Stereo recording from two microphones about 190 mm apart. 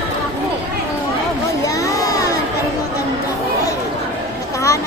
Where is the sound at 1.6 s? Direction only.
15° left (ahead or behind).